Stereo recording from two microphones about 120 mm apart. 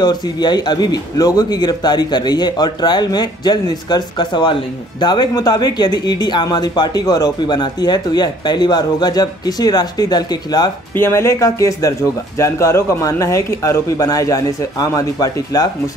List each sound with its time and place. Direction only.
0.0 s speech: 35° left (ahead or behind)
11.0 s speech: 20° left (ahead or behind)